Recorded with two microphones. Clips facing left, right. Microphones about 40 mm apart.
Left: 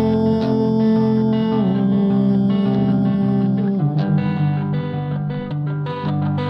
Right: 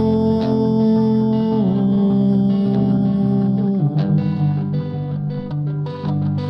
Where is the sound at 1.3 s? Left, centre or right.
Left.